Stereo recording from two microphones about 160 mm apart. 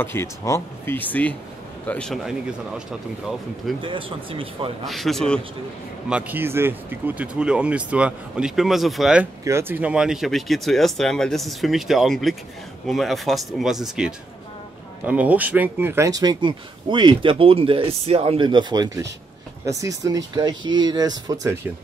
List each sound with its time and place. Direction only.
0.0 s speech: 15° left (ahead or behind)
3.8 s speech: 30° right (ahead or behind)
4.8 s speech: centre (ahead or behind)
6.0 s speech: 10° right (ahead or behind)
9.4 s speech: 15° right (ahead or behind)